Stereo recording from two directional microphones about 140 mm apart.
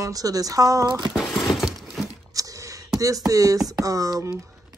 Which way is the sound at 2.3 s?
25° right (ahead or behind).